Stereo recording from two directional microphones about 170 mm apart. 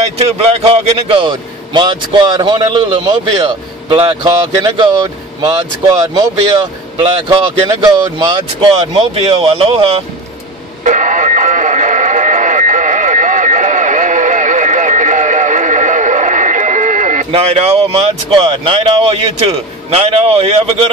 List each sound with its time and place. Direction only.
0.2 s speech: 35° right (ahead or behind)
10.8 s radio: 50° right (ahead or behind)
17.3 s speech: 35° right (ahead or behind)